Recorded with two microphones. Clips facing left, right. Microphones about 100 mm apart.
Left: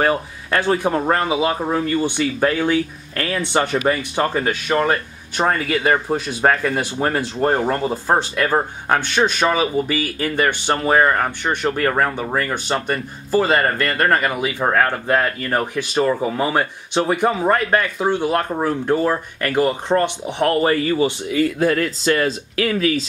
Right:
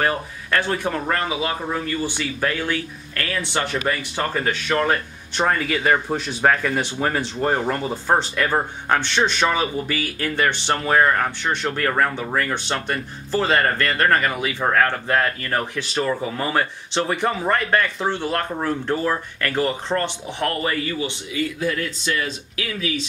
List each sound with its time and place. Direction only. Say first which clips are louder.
0.0 s speech: left 4 dB; 20° left (ahead or behind)
20.6 s speech: left 7 dB; 35° left (ahead or behind)
21.5 s speech: left 6 dB; 50° left (ahead or behind)